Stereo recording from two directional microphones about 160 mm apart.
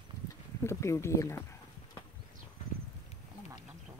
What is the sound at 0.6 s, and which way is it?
Speech, 15° left (ahead or behind).